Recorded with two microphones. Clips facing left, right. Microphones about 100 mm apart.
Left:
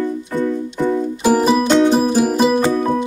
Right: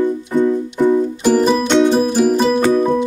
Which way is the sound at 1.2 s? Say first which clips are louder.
Left 1 dB; 5° left (ahead or behind).